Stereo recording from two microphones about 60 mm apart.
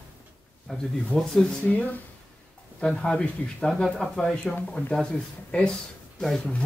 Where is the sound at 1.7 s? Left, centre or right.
Left.